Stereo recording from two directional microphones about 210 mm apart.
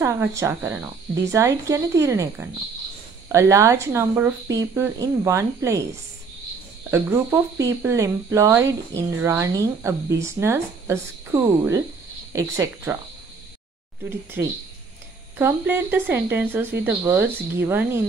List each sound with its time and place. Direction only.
0.0 s speech: 15° right (ahead or behind)
6.9 s speech: 10° right (ahead or behind)
14.0 s speech: 10° right (ahead or behind)